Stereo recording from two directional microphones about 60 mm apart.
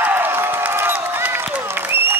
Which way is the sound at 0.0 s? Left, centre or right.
Right.